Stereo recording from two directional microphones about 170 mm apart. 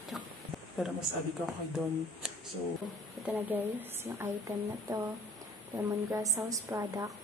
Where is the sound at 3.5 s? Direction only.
10° right (ahead or behind).